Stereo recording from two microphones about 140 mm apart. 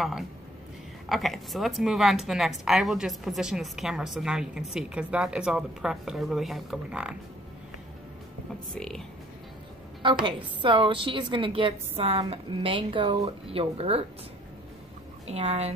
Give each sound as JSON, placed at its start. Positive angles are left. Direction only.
{"t": 1.0, "sound": "a woman's voice", "side_deg": 0}
{"t": 8.7, "sound": "a woman's voice", "side_deg": 5}
{"t": 10.2, "sound": "a woman's voice", "side_deg": -35}
{"t": 15.2, "sound": "a woman's voice", "side_deg": -50}